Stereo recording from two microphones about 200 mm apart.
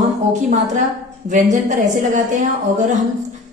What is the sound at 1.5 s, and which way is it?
A woman's voice, 40° right (ahead or behind).